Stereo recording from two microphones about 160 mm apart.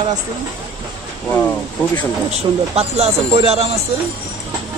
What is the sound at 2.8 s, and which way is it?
Speech, 40° right (ahead or behind).